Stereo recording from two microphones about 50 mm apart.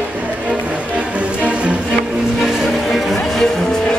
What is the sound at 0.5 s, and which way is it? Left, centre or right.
Music, right.